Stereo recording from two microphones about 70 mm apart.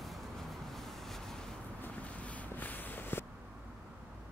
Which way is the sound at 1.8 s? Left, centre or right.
Centre.